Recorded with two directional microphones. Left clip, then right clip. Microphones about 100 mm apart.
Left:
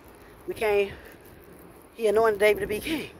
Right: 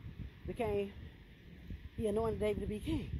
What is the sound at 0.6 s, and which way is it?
Speech, 25° right (ahead or behind).